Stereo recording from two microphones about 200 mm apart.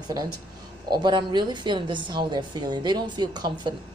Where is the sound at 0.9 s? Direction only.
20° right (ahead or behind).